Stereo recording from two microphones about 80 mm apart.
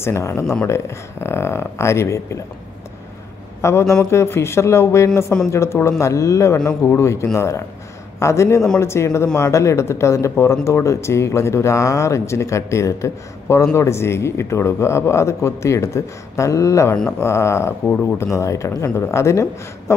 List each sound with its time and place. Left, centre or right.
0.0 s speech: left
3.6 s speech: left